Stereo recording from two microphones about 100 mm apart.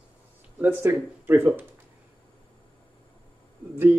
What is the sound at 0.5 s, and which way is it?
Speech, 20° right (ahead or behind).